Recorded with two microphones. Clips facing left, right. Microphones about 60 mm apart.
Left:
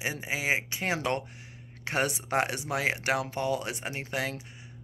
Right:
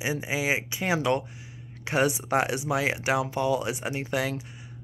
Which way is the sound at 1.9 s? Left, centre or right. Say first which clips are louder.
Right 5 dB; left.